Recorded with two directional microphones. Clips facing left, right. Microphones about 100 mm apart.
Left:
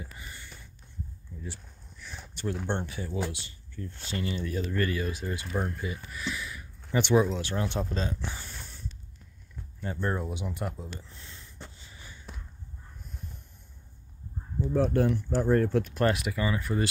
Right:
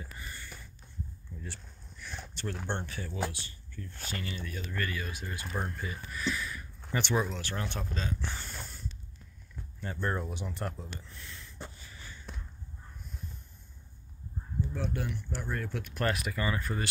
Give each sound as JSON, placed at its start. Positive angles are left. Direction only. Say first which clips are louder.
{"t": 0.0, "sound": "a sound", "louder": "even", "side_deg": 20}
{"t": 1.4, "sound": "a sound", "louder": "left 5 dB", "side_deg": 5}
{"t": 2.4, "sound": "speech", "louder": "left 5 dB", "side_deg": 15}
{"t": 5.5, "sound": "speech", "louder": "left 3 dB", "side_deg": 10}
{"t": 7.9, "sound": "speech", "louder": "left 4 dB", "side_deg": 30}
{"t": 8.2, "sound": "speech", "louder": "left 1 dB", "side_deg": 10}
{"t": 8.5, "sound": "snort", "louder": "right 2 dB", "side_deg": 0}
{"t": 9.8, "sound": "speech", "louder": "left 3 dB", "side_deg": 10}
{"t": 11.0, "sound": "speech", "louder": "even", "side_deg": 25}
{"t": 11.8, "sound": "a sound", "louder": "even", "side_deg": 20}
{"t": 14.7, "sound": "speech", "louder": "left 15 dB", "side_deg": 45}